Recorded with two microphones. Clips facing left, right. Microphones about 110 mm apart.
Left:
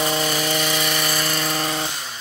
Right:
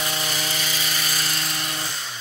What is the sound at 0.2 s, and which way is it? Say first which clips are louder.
Helicopter: left 7 dB; 50° left (ahead or behind).